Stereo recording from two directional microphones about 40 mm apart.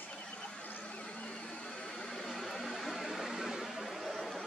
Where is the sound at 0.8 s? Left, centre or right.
Left.